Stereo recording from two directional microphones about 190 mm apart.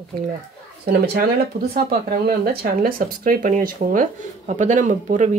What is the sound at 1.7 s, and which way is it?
Speech, 55° right (ahead or behind).